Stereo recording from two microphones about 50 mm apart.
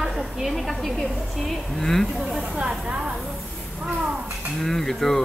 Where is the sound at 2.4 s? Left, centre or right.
Centre.